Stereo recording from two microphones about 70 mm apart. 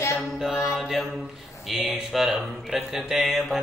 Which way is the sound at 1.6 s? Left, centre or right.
Centre.